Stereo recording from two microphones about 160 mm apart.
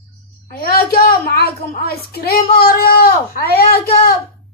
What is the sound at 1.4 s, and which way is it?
Speech, 85° left.